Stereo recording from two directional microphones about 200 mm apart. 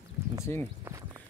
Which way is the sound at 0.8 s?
15° right (ahead or behind).